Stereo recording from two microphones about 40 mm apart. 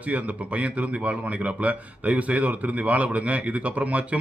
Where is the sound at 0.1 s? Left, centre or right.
Right.